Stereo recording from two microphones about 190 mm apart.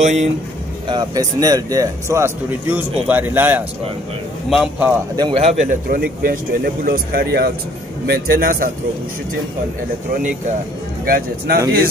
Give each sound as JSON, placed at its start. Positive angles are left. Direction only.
{"t": 0.0, "sound": "speech", "side_deg": -35}
{"t": 0.8, "sound": "speech", "side_deg": -20}
{"t": 5.1, "sound": "speech", "side_deg": -25}
{"t": 11.1, "sound": "speech", "side_deg": -55}